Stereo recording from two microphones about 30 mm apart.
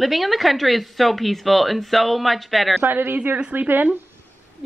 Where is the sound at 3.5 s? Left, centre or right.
Right.